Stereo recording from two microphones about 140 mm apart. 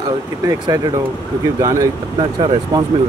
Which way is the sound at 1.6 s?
25° right (ahead or behind).